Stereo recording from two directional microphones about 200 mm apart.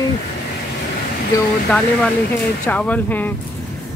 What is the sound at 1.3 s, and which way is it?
Speech, 15° left (ahead or behind).